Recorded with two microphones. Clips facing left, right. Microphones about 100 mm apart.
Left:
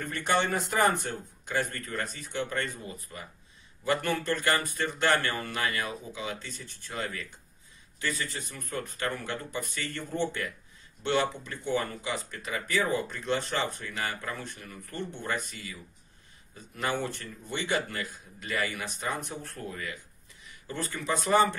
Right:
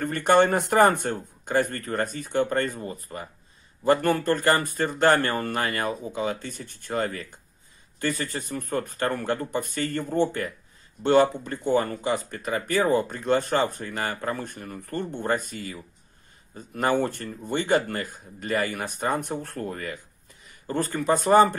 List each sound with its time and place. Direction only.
0.0 s speech: 55° right (ahead or behind)